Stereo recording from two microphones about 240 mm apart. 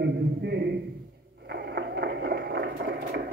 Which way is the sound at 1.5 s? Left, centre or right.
Right.